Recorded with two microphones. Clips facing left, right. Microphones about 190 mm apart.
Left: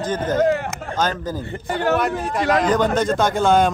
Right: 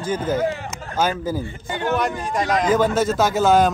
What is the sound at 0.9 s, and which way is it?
Speech, 10° right (ahead or behind).